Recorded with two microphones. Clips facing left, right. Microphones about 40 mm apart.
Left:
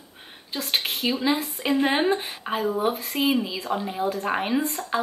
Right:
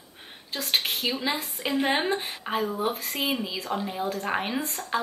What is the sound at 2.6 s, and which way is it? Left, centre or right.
A woman's voice, centre.